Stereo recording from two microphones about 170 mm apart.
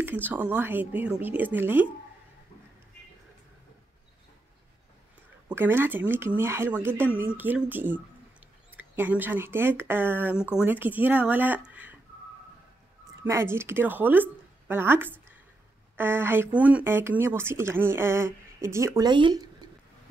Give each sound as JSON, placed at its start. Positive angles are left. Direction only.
{"t": 0.0, "sound": "speech", "side_deg": -10}
{"t": 5.5, "sound": "speech", "side_deg": -15}
{"t": 13.2, "sound": "speech", "side_deg": -15}